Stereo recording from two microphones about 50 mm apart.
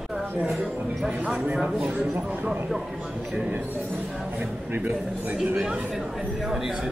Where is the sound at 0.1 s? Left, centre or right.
Centre.